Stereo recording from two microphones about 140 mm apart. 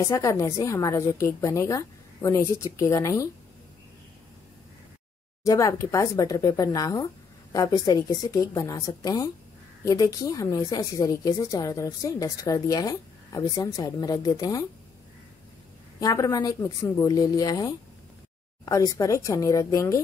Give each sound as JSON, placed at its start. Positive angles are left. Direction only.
{"t": 0.0, "sound": "a woman's voice", "side_deg": 25}
{"t": 5.4, "sound": "a woman's voice", "side_deg": 25}
{"t": 16.0, "sound": "a woman's voice", "side_deg": 25}